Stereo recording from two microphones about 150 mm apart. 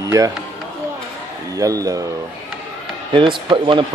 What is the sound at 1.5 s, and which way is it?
Speech, 20° right (ahead or behind).